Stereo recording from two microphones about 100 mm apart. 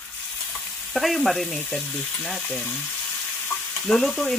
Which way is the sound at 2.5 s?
20° left (ahead or behind).